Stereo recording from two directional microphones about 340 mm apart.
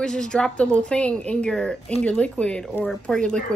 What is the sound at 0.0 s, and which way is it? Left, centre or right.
A woman's voice, centre.